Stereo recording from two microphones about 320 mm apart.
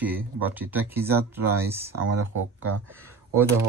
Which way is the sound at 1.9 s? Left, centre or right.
Right.